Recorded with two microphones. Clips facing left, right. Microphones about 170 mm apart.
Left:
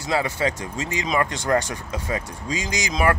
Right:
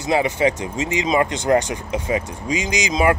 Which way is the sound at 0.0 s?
20° right (ahead or behind).